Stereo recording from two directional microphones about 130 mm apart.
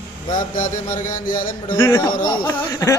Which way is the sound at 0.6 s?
90° left.